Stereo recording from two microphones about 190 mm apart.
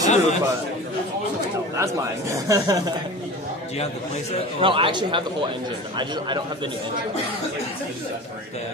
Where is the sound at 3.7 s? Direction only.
35° left (ahead or behind).